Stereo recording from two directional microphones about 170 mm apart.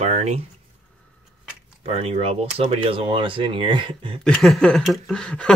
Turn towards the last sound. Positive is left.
turn(degrees=5)  # may be behind; listen again after turning